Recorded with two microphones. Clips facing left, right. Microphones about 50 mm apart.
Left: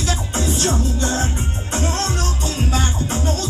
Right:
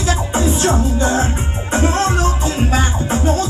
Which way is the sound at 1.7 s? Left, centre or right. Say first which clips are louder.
Right 7 dB; right.